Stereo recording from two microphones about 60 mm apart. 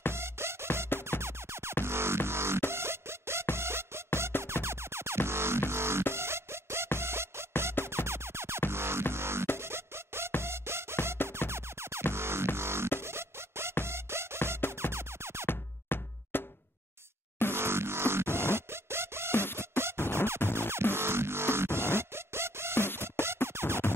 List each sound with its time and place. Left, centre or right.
0.1 s music: right
6.1 s a sound: right
7.0 s music: right
15.4 s music: left
17.5 s music: right
20.0 s music: left
20.9 s music: right